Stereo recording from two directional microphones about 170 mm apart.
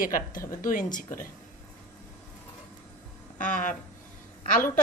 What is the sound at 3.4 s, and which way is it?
Speech, 50° left (ahead or behind).